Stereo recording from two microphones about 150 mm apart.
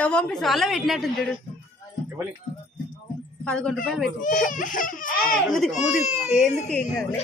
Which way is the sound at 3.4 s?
5° left (ahead or behind).